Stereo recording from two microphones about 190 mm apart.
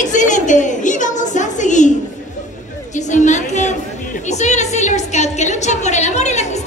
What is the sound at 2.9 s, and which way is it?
Chatter, 40° left (ahead or behind).